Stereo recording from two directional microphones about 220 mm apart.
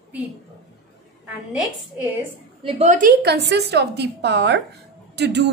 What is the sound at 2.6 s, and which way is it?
A woman's voice, 30° right (ahead or behind).